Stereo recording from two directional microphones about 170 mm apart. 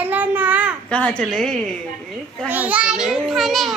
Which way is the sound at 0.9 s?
5° left (ahead or behind).